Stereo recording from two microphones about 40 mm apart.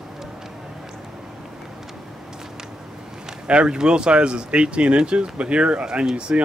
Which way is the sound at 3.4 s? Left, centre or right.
Right.